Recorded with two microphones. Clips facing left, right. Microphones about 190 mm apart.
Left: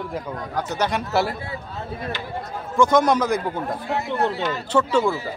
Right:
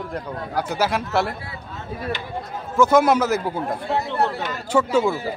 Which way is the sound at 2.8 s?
5° right (ahead or behind).